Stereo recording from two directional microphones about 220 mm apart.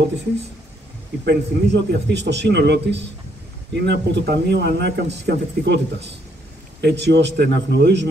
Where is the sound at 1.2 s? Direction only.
50° right (ahead or behind).